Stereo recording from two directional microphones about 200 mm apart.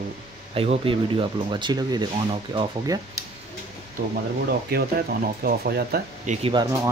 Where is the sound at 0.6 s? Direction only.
30° right (ahead or behind).